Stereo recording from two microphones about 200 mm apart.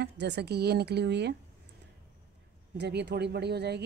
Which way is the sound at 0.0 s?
55° right (ahead or behind).